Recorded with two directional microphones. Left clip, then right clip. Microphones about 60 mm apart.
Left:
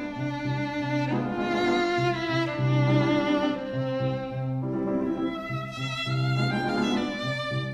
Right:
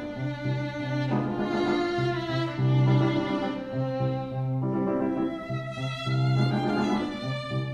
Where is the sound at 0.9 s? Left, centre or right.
Right.